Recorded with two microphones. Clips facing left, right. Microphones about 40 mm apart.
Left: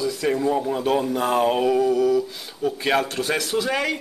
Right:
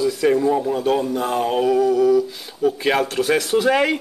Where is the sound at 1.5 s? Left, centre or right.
Centre.